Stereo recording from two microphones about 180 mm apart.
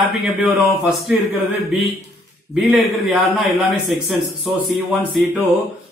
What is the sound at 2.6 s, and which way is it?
Speech, centre (ahead or behind).